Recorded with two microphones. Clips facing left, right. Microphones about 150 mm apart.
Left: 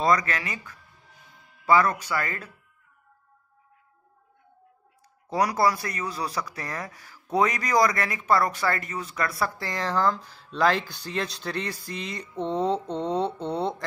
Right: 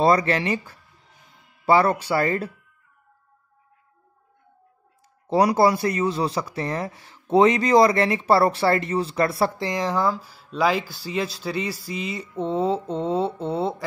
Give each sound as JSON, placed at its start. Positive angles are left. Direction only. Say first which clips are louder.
{"t": 0.0, "sound": "speech", "louder": "right 5 dB", "side_deg": -30}
{"t": 5.3, "sound": "speech", "louder": "right 5 dB", "side_deg": -30}